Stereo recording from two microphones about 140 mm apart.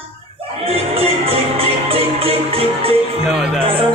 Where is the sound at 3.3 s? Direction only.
5° right (ahead or behind).